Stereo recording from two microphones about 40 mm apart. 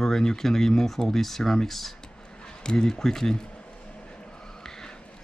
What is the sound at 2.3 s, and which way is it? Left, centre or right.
A man's voice, centre.